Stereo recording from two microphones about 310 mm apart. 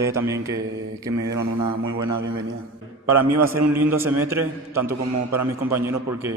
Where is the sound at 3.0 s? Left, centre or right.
Centre.